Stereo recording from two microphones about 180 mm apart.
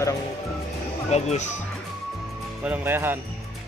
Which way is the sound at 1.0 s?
40° left (ahead or behind).